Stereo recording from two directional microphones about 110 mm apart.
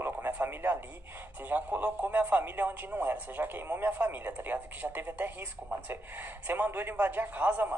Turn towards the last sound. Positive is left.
turn(degrees=-15)  # may be behind; listen again after turning